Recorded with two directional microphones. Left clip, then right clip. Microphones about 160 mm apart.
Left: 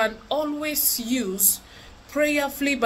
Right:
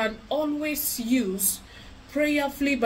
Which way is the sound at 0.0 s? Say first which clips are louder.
Left 2 dB; 15° right (ahead or behind).